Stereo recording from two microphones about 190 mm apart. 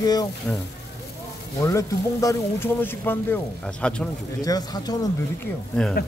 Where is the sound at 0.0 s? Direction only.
20° left (ahead or behind).